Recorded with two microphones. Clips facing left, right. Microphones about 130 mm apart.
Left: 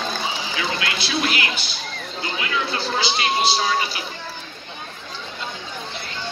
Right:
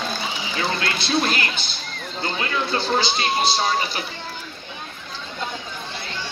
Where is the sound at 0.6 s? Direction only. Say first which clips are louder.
Right 3 dB; 40° right (ahead or behind).